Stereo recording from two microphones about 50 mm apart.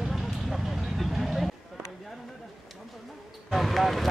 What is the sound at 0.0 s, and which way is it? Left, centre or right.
Vehicle, centre.